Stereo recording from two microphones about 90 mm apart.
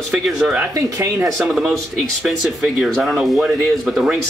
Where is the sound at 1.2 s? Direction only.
5° right (ahead or behind).